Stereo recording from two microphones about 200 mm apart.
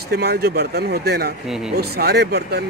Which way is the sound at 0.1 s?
55° right (ahead or behind).